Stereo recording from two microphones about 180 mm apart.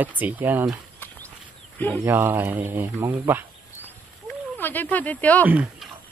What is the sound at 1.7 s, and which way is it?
Speech, 10° left (ahead or behind).